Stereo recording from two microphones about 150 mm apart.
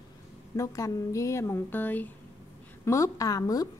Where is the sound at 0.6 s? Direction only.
20° left (ahead or behind).